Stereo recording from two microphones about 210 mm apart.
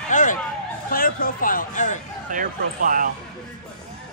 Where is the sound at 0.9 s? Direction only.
45° left (ahead or behind).